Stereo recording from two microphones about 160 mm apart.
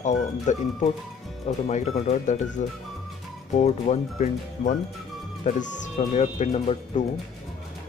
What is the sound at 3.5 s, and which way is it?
Speech, 45° left (ahead or behind).